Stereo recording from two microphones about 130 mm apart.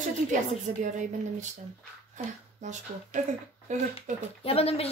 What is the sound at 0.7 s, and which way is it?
Speech, 90° right.